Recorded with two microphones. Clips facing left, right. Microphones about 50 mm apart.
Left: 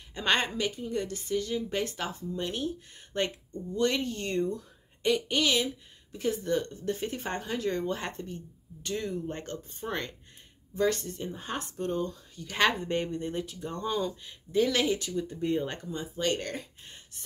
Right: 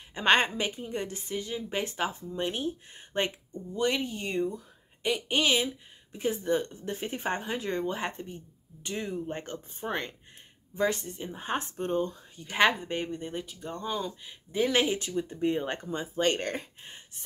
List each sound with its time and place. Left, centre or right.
0.1 s speech: right; by 5.2 s centre
5.3 s speech: right
11.4 s speech: right
12.5 s speech: centre
12.9 s speech: centre
14.5 s speech: right
15.9 s speech: right